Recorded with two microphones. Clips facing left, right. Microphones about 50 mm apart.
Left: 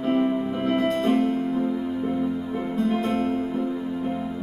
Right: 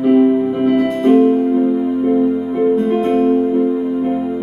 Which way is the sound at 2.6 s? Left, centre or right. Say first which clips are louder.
Right 11 dB; right.